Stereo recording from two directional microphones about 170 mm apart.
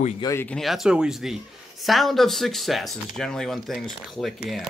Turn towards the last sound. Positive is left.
turn(degrees=0)  # may be behind; listen again after turning